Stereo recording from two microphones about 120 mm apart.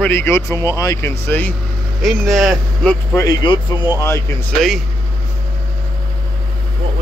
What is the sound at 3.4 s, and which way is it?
Speech, 40° left (ahead or behind).